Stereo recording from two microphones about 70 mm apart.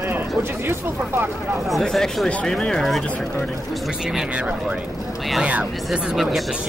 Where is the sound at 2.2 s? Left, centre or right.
Centre.